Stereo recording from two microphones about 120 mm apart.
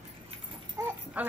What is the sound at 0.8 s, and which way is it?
Speech, 25° right (ahead or behind).